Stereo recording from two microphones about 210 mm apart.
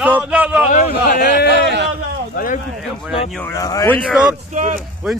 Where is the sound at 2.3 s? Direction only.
40° left (ahead or behind).